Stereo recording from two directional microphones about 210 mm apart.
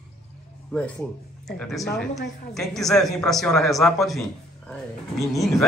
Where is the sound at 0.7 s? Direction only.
10° left (ahead or behind).